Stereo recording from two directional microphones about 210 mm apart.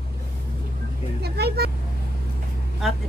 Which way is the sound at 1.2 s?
50° right (ahead or behind).